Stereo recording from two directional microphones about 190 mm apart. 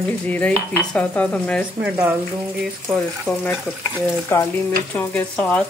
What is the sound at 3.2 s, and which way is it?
Speech, centre (ahead or behind).